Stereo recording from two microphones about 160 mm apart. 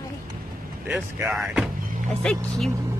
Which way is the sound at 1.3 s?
5° right (ahead or behind).